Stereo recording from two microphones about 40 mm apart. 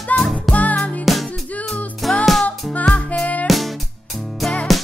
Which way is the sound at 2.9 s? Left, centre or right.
Left.